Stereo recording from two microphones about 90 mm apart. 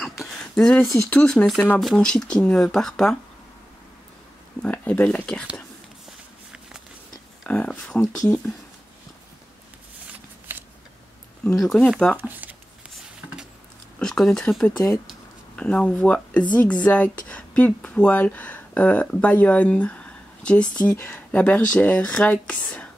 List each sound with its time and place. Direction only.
0.3 s a sound: 5° left (ahead or behind)
1.1 s speech: 10° left (ahead or behind)
4.6 s speech: 15° left (ahead or behind)
6.0 s walk: 5° right (ahead or behind)
7.4 s speech: 10° left (ahead or behind)
10.5 s a sound: 25° right (ahead or behind)
11.4 s speech: 5° left (ahead or behind)
12.3 s speech: 20° right (ahead or behind)
13.9 s speech: 5° left (ahead or behind)
20.9 s speech: 30° left (ahead or behind)
21.3 s speech: 20° left (ahead or behind)